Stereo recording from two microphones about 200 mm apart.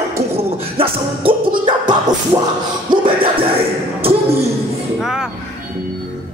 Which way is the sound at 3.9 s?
30° right (ahead or behind).